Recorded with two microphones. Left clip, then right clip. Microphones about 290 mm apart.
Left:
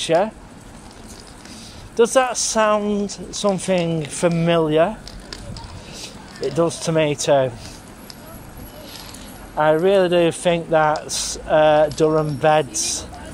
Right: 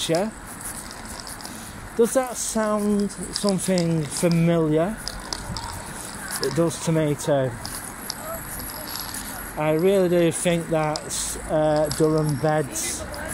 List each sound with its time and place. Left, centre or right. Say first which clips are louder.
0.0 s speech: left 6 dB; left
2.0 s speech: left 5 dB; left
6.5 s speech: left 5 dB; left
9.6 s speech: left 5 dB; left